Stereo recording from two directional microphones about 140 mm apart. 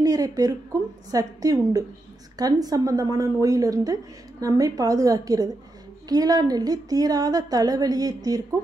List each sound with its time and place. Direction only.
0.0 s a woman's voice: 25° right (ahead or behind)